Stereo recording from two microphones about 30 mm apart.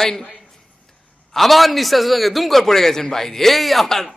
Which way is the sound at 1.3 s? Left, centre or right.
Centre.